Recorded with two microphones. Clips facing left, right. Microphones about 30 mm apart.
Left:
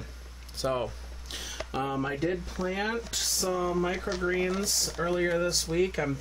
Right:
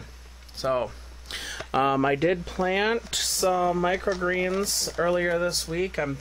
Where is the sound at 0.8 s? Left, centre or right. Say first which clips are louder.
Right 2 dB; right.